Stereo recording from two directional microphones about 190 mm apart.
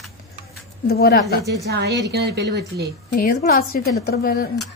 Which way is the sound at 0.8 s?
55° left (ahead or behind).